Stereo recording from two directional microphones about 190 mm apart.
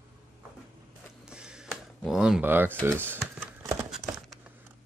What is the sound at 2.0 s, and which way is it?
Speech, 5° right (ahead or behind).